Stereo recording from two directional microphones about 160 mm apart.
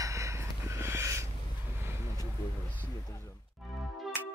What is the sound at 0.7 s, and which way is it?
Owl, 15° right (ahead or behind).